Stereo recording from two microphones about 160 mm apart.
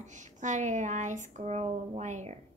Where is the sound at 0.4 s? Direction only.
50° right (ahead or behind).